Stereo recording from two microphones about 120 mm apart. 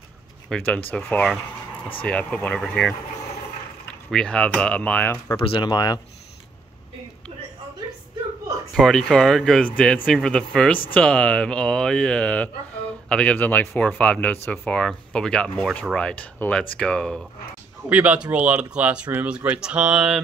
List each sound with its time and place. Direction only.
0.5 s speech: 15° left (ahead or behind)
4.1 s speech: 5° left (ahead or behind)
5.3 s speech: 45° left (ahead or behind)
8.7 s speech: 5° left (ahead or behind)
17.8 s speech: 10° right (ahead or behind)